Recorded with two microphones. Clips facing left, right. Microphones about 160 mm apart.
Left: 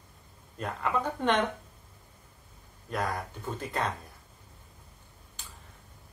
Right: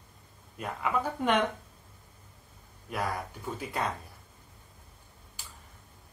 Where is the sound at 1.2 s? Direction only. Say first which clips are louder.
Even; 5° right (ahead or behind).